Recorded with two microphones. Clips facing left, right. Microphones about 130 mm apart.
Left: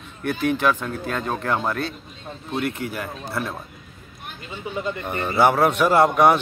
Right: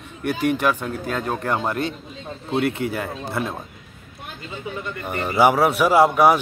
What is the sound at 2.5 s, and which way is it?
Speech, 30° right (ahead or behind).